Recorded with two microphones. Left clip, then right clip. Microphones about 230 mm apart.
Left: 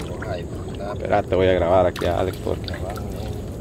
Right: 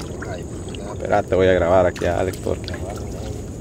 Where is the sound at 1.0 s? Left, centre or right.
Centre.